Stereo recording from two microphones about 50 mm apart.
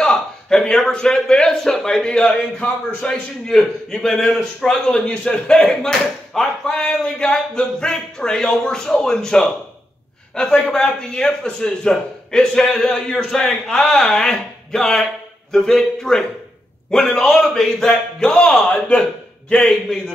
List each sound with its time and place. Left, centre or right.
0.0 s a man's voice: centre
4.8 s a man's voice: centre
18.7 s a man's voice: left